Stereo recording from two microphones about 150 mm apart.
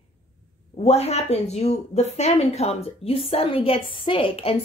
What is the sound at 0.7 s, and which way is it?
A woman's voice, 45° left (ahead or behind).